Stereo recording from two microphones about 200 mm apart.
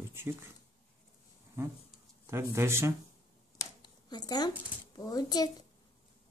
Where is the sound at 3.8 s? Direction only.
20° left (ahead or behind).